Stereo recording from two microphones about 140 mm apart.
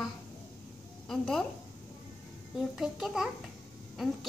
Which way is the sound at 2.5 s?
Centre (ahead or behind).